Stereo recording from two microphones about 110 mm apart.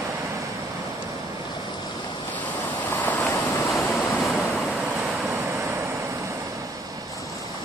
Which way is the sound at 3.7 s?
Centre (ahead or behind).